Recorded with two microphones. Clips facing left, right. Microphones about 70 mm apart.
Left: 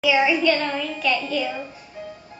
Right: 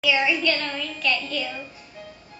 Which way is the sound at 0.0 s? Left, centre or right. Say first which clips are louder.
Left 4 dB; centre.